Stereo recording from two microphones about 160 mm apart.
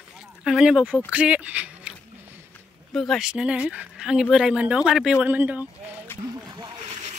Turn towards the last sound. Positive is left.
turn(degrees=-45)  # may be behind; listen again after turning